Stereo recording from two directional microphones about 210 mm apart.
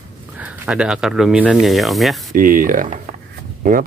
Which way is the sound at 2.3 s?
40° right (ahead or behind).